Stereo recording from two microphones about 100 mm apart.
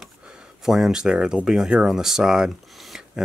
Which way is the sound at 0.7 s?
5° right (ahead or behind).